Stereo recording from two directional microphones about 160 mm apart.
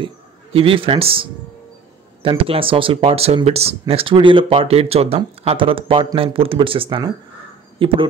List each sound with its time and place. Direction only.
0.0 s speech: 35° right (ahead or behind)